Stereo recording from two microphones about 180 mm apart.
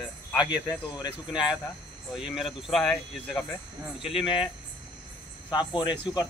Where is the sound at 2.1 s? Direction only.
Centre (ahead or behind).